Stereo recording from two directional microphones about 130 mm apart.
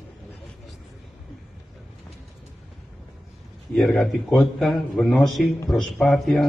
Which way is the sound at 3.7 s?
5° left (ahead or behind).